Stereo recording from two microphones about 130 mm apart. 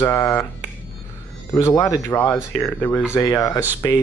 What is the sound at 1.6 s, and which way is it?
Speech, 30° left (ahead or behind).